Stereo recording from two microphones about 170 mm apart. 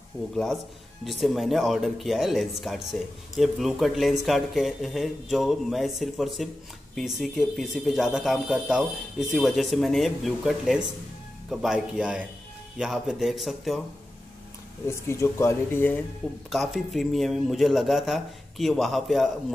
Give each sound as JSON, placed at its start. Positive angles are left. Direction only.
{"t": 1.0, "sound": "speech", "side_deg": 0}
{"t": 14.9, "sound": "speech", "side_deg": 15}
{"t": 16.4, "sound": "speech", "side_deg": 0}